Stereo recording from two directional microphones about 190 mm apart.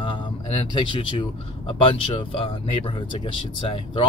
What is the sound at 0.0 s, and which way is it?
Speech, 25° left (ahead or behind).